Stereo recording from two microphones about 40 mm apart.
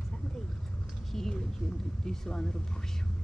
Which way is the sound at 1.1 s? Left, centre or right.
Centre.